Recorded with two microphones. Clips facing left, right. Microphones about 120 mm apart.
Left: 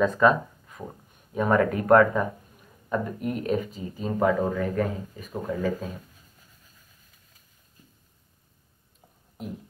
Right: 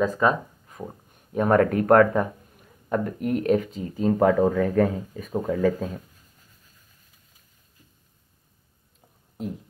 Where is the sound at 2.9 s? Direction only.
60° right (ahead or behind).